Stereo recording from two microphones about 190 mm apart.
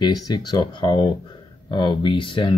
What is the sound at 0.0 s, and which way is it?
Speech, 20° left (ahead or behind).